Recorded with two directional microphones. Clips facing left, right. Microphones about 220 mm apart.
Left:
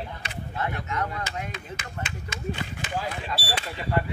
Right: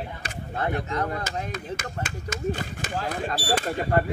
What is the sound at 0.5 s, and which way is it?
Speech, 40° right (ahead or behind).